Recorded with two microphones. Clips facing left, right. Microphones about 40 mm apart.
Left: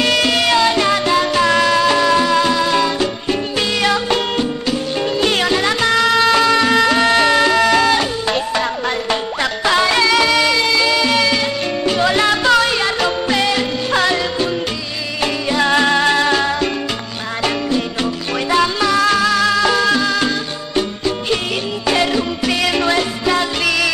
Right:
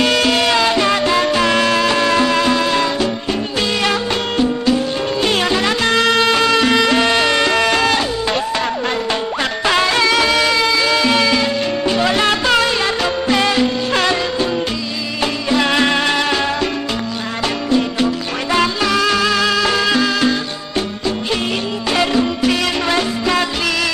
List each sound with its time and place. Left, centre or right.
0.0 s music: centre
1.4 s music: centre
4.1 s music: centre
6.0 s music: right
11.8 s salsa music: centre
12.3 s music: centre
12.6 s music: centre
15.7 s music: centre
16.3 s music: centre
17.7 s music: centre
21.8 s music: centre